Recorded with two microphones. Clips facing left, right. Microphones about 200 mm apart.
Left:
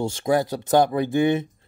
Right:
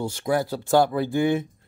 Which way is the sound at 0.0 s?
25° left (ahead or behind).